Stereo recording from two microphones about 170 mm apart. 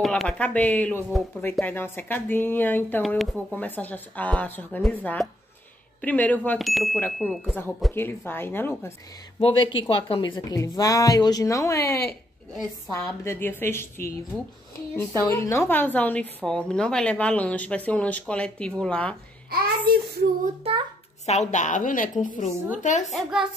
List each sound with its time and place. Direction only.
0.0 s speech: 5° left (ahead or behind)
8.3 s speech: 10° left (ahead or behind)
9.4 s a woman's voice: 35° left (ahead or behind); by 19.1 s 5° left (ahead or behind)
19.5 s a child's voice: 65° right (ahead or behind)
21.3 s a woman's voice: 40° left (ahead or behind)
23.1 s speech: centre (ahead or behind)